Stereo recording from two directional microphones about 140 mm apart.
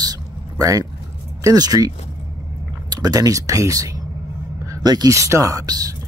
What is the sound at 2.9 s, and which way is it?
Speech, 25° right (ahead or behind).